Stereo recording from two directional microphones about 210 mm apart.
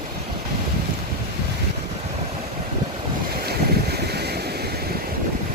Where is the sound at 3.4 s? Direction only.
50° right (ahead or behind).